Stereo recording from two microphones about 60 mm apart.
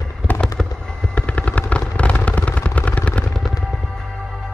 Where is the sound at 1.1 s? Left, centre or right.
Left.